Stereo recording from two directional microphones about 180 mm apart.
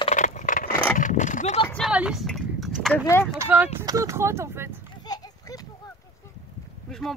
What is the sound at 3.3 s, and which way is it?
Speech, 10° right (ahead or behind).